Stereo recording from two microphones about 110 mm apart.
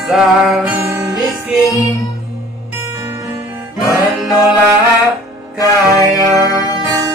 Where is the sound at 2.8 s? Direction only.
25° right (ahead or behind).